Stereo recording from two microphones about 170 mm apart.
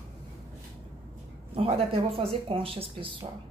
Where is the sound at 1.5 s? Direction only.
35° right (ahead or behind).